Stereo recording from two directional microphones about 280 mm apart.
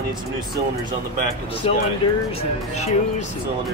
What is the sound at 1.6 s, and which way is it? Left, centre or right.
Speech, left.